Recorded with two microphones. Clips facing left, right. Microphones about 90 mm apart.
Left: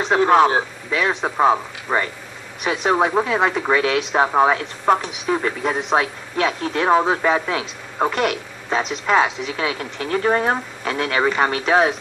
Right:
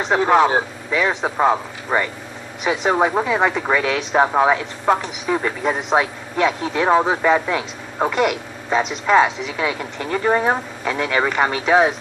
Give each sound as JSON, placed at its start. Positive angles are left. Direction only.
{"t": 0.0, "sound": "speech", "side_deg": -5}